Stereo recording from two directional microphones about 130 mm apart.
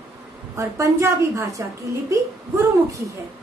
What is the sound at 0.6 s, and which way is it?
A woman's voice, 20° right (ahead or behind).